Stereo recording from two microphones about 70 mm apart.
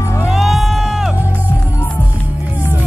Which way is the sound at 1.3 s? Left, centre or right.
Left.